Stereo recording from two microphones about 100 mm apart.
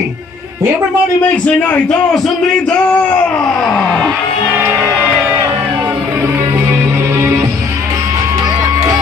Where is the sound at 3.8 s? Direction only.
10° left (ahead or behind).